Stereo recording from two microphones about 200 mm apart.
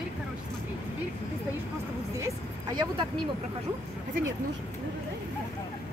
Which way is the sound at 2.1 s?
20° right (ahead or behind).